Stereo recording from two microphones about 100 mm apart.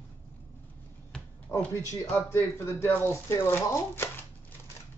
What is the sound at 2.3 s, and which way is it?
Speech, 25° left (ahead or behind).